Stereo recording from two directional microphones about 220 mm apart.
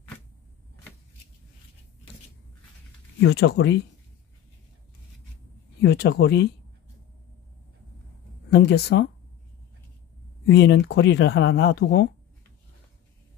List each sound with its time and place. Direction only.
3.2 s speech: 50° left (ahead or behind)
5.8 s speech: 50° left (ahead or behind)
8.5 s speech: 50° left (ahead or behind)
10.4 s speech: 50° left (ahead or behind)